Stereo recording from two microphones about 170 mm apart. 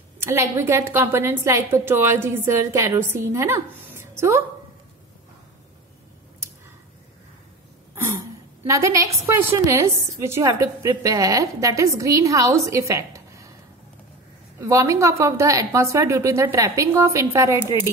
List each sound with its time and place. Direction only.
0.2 s a woman's voice: 15° right (ahead or behind)
8.6 s a woman's voice: 15° right (ahead or behind)
14.6 s a woman's voice: 15° right (ahead or behind)